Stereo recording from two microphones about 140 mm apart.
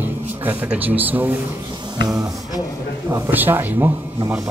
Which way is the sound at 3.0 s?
15° right (ahead or behind).